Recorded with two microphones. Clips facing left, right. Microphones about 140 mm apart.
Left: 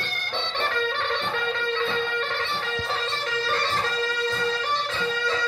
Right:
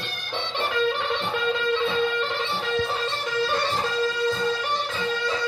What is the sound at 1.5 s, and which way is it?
Music, 20° right (ahead or behind).